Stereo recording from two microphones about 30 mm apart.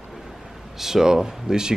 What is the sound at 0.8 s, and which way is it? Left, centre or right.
Speech, centre.